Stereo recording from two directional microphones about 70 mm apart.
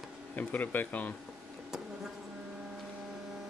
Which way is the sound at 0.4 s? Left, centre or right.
Left.